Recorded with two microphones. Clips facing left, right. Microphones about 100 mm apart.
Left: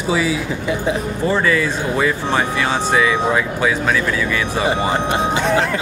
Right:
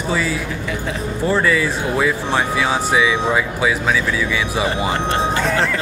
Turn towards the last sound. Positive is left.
turn(degrees=20)  # may be behind; listen again after turning